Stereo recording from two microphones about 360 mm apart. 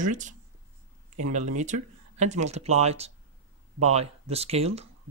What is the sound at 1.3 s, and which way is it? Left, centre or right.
Speech, centre.